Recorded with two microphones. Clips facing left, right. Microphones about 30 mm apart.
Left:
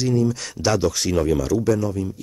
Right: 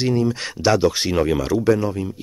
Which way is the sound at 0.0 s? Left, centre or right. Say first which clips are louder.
Right 1 dB; right.